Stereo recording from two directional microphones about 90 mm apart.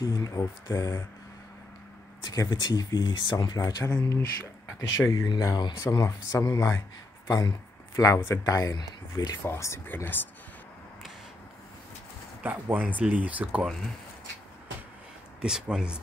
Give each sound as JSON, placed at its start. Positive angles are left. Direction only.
{"t": 0.0, "sound": "speech", "side_deg": 35}
{"t": 2.2, "sound": "speech", "side_deg": 45}
{"t": 9.4, "sound": "speech", "side_deg": 30}
{"t": 12.7, "sound": "speech", "side_deg": -15}
{"t": 15.4, "sound": "speech", "side_deg": -5}